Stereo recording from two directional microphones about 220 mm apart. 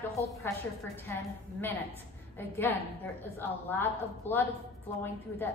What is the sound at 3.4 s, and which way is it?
A woman's voice, 10° left (ahead or behind).